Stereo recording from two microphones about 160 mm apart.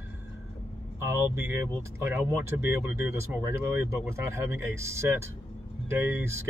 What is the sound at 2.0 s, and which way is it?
Speech, 15° right (ahead or behind).